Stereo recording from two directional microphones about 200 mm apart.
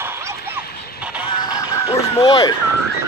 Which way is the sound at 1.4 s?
20° left (ahead or behind).